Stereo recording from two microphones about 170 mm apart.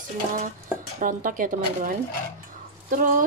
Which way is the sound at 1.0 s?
50° right (ahead or behind).